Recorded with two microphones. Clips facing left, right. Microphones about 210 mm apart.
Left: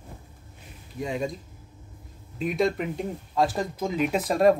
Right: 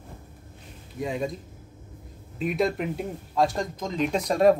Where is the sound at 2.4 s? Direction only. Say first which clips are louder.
Even; centre (ahead or behind).